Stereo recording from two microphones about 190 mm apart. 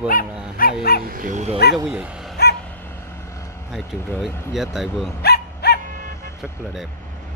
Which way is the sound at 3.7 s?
Centre (ahead or behind).